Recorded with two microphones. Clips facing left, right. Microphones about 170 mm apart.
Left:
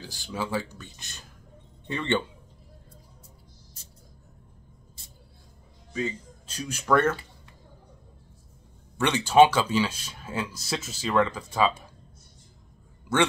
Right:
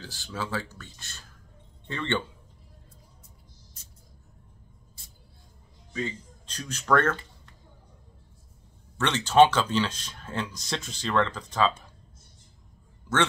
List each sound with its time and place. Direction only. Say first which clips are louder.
0.0 s speech: left 2 dB; 15° left (ahead or behind)
5.9 s speech: left 2 dB; 5° left (ahead or behind)
8.9 s speech: left 1 dB; 10° left (ahead or behind)